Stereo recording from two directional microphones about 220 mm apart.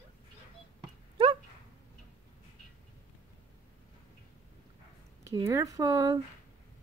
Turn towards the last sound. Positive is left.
turn(degrees=-15)  # may be behind; listen again after turning